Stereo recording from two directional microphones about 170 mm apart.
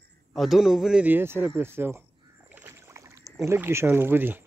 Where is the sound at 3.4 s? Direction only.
15° right (ahead or behind).